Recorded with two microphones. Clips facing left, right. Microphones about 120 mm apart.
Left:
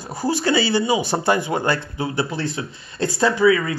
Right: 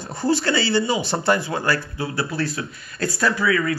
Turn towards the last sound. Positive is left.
turn(degrees=20)  # may be behind; listen again after turning